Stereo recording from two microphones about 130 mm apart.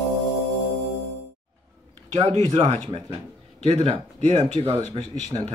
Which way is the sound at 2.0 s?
60° right (ahead or behind).